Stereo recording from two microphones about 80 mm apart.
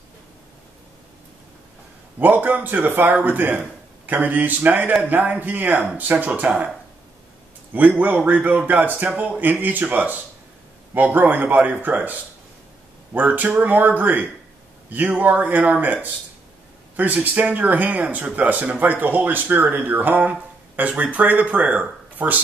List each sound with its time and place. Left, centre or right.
2.1 s speech: right
7.7 s speech: right